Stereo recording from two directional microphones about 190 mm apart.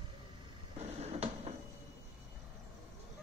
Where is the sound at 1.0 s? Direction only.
35° right (ahead or behind).